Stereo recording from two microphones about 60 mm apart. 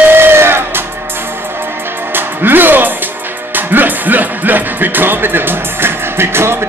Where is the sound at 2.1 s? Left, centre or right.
Right.